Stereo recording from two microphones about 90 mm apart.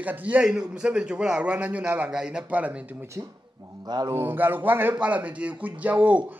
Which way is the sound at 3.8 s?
50° right (ahead or behind).